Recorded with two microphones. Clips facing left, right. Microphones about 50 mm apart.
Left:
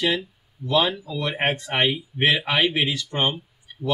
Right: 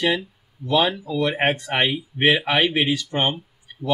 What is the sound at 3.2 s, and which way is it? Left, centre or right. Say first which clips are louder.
Speech: left 1 dB; centre.